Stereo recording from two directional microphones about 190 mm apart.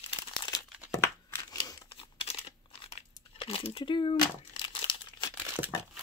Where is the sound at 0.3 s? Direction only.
20° left (ahead or behind).